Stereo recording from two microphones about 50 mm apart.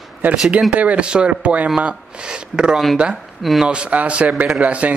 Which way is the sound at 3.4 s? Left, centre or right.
Centre.